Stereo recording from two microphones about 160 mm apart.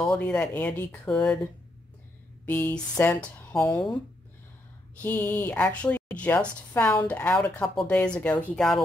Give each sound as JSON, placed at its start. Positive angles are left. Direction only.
{"t": 0.1, "sound": "speech", "side_deg": 10}
{"t": 5.0, "sound": "speech", "side_deg": 10}